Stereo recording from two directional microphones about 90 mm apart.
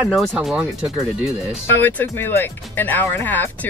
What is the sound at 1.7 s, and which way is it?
Speech, 20° left (ahead or behind).